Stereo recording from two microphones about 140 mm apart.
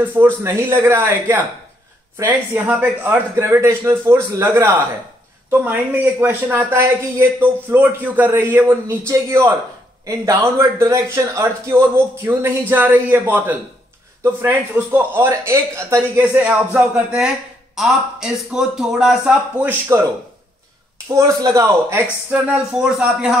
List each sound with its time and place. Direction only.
0.0 s a man's voice: 15° right (ahead or behind)
19.9 s a man's voice: 20° right (ahead or behind)
21.1 s a man's voice: 25° right (ahead or behind)
22.0 s speech: 10° right (ahead or behind)